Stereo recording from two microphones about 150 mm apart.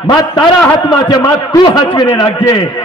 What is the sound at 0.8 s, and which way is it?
A man's voice, 25° left (ahead or behind).